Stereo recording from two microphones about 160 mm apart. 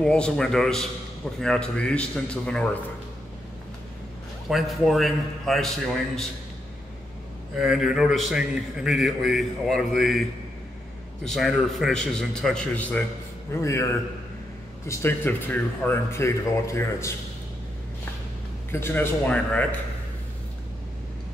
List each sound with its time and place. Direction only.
0.0 s a man's voice: 5° left (ahead or behind)
4.5 s a man's voice: centre (ahead or behind)
7.5 s a man's voice: 5° right (ahead or behind)
11.2 s a man's voice: centre (ahead or behind); by 13.8 s 15° left (ahead or behind)
14.9 s speech: 15° left (ahead or behind)
18.7 s speech: 15° left (ahead or behind)